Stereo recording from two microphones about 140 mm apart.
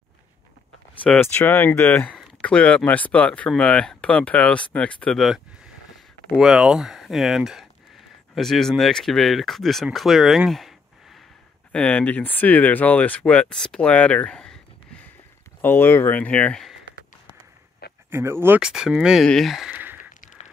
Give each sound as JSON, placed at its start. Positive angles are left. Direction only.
{"t": 1.0, "sound": "speech", "side_deg": 10}
{"t": 9.9, "sound": "a sound", "side_deg": 0}
{"t": 11.7, "sound": "speech", "side_deg": 10}
{"t": 15.6, "sound": "speech", "side_deg": 15}
{"t": 18.1, "sound": "speech", "side_deg": -15}
{"t": 18.6, "sound": "speech", "side_deg": -5}
{"t": 19.7, "sound": "a sound", "side_deg": -15}